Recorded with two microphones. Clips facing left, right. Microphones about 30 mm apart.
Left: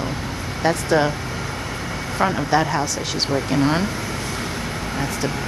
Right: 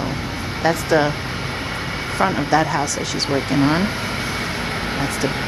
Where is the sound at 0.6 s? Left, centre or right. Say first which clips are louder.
Right 1 dB; centre.